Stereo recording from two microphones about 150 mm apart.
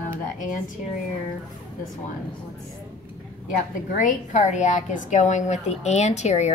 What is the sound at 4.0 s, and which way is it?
A woman's voice, 55° left (ahead or behind).